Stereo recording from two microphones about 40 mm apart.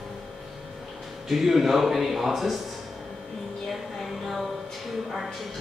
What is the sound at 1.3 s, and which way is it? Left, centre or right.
A man's voice, centre.